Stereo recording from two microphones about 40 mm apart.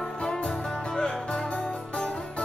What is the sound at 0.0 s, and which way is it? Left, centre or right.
Music, left.